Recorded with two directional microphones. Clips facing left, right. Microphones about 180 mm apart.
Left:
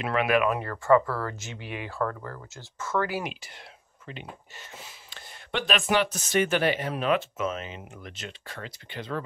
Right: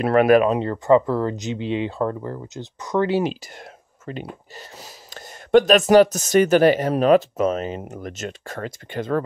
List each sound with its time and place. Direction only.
0.0 s speech: 40° right (ahead or behind)
0.5 s speech: 20° right (ahead or behind)
3.5 s speech: 45° right (ahead or behind)